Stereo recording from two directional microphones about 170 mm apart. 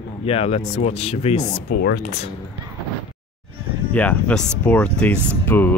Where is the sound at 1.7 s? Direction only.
70° left (ahead or behind).